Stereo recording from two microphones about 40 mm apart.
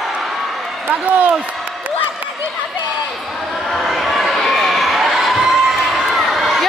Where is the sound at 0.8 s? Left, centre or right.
Right.